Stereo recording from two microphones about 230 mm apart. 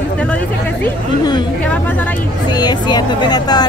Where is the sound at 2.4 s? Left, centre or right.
Centre.